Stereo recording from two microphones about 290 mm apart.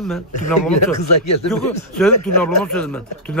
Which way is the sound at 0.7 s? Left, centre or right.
Left.